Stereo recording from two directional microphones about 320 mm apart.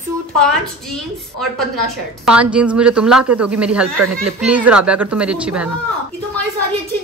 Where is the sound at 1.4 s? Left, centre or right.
Centre.